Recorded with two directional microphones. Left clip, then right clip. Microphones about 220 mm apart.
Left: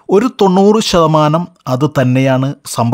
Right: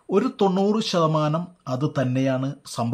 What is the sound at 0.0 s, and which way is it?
Speech, 45° left (ahead or behind).